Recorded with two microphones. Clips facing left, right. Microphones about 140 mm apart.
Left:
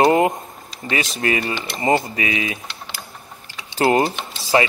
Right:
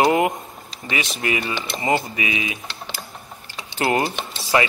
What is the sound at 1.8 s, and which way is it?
Speech, 35° left (ahead or behind).